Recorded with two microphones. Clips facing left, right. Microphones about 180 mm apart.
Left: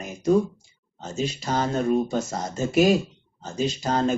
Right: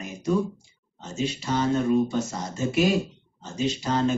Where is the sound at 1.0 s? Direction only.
40° left (ahead or behind).